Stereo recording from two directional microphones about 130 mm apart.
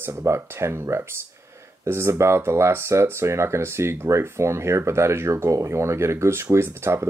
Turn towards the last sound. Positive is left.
turn(degrees=-20)  # may be behind; listen again after turning